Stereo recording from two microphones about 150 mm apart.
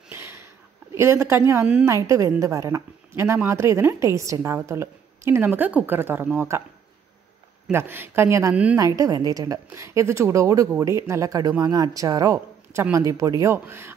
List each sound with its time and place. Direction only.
0.1 s a sound: 15° right (ahead or behind)
0.9 s a woman's voice: 15° right (ahead or behind)
7.7 s a woman's voice: 15° right (ahead or behind)